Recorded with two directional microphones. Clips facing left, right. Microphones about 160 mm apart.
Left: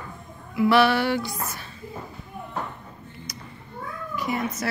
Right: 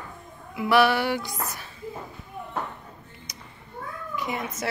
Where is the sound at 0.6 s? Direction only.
15° right (ahead or behind).